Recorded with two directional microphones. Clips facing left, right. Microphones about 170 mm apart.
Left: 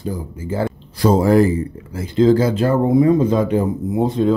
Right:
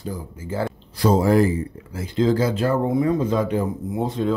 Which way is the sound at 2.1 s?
30° left (ahead or behind).